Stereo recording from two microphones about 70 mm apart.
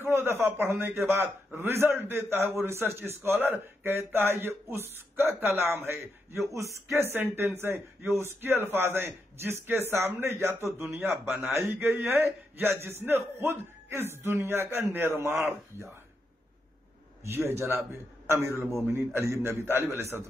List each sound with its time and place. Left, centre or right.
0.1 s a man's voice: right
6.9 s a man's voice: right
17.2 s a man's voice: right